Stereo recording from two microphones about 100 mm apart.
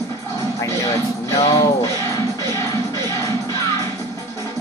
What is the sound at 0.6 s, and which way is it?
Music, 30° left (ahead or behind).